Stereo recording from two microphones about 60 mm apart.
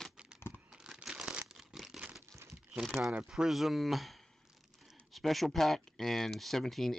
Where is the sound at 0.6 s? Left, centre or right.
Centre.